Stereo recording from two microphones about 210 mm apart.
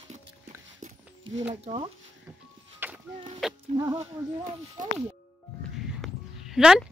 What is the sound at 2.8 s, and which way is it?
Music, 10° right (ahead or behind).